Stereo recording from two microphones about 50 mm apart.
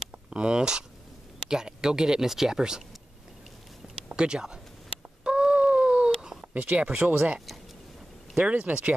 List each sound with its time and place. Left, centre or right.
0.3 s speech: centre
4.1 s speech: centre
5.2 s a sound: centre
6.5 s speech: right
7.0 s speech: right
8.4 s speech: right